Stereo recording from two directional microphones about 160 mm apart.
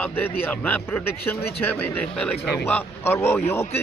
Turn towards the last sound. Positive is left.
turn(degrees=15)  # may be behind; listen again after turning